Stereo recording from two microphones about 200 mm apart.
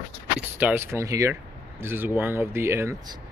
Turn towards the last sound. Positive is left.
turn(degrees=-15)  # may be behind; listen again after turning